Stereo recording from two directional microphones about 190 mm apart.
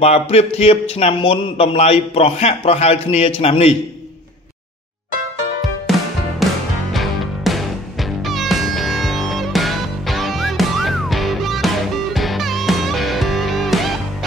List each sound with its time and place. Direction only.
0.0 s a man's voice: 35° left (ahead or behind)
6.4 s music: centre (ahead or behind)